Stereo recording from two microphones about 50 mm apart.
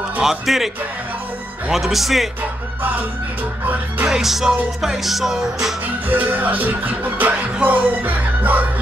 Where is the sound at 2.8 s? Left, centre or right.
Right.